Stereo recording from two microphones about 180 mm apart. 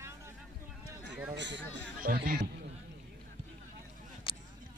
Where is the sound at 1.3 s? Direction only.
80° right.